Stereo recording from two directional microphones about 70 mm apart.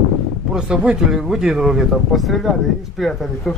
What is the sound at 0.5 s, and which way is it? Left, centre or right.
Speech, centre.